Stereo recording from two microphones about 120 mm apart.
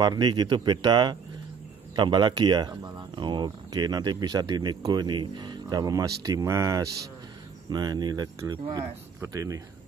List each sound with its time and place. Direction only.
0.0 s speech: 35° right (ahead or behind)
7.7 s speech: 35° right (ahead or behind)